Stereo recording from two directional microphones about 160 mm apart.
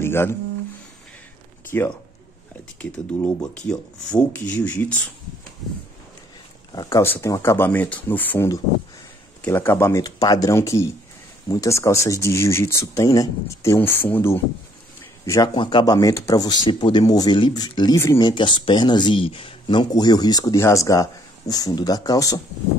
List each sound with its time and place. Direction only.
0.0 s speech: 15° left (ahead or behind)
1.7 s speech: 15° left (ahead or behind)
3.6 s speech: 5° left (ahead or behind)
6.7 s speech: 25° left (ahead or behind)